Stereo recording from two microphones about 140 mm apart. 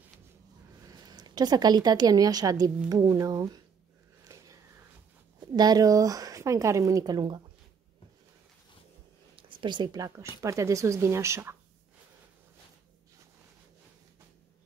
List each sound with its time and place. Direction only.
0.8 s a woman's voice: 30° right (ahead or behind)
4.2 s sniff: 25° right (ahead or behind)
5.5 s speech: 30° right (ahead or behind)
9.3 s speech: 35° right (ahead or behind); by 11.5 s 20° right (ahead or behind)